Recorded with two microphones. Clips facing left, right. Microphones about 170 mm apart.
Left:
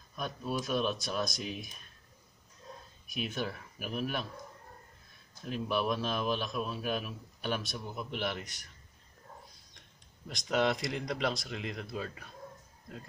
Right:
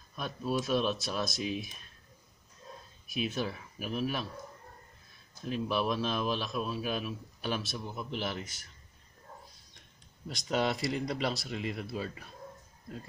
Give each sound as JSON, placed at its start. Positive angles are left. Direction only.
{"t": 0.1, "sound": "a man's voice", "side_deg": 0}
{"t": 3.1, "sound": "a man's voice", "side_deg": 0}
{"t": 5.4, "sound": "a man's voice", "side_deg": 0}
{"t": 10.2, "sound": "a man's voice", "side_deg": 0}